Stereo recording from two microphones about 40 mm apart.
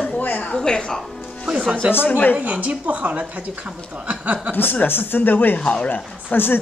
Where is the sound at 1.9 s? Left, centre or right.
Left.